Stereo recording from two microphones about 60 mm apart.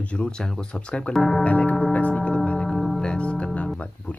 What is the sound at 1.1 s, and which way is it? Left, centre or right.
Speech, centre.